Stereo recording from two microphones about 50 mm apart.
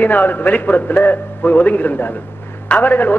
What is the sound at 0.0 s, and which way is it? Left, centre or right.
A man's voice, left.